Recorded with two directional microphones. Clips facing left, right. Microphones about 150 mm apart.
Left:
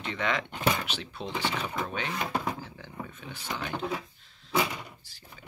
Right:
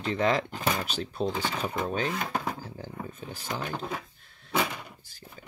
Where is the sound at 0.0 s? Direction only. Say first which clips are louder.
Right 5 dB; 35° right (ahead or behind).